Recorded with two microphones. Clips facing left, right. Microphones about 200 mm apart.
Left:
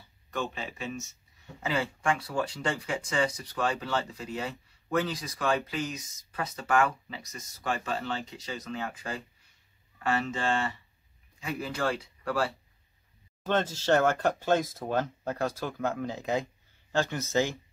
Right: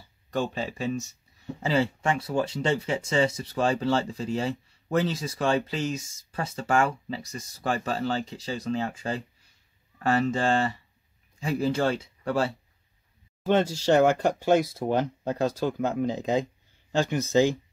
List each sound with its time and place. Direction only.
0.3 s speech: 35° right (ahead or behind)
13.5 s speech: 10° right (ahead or behind)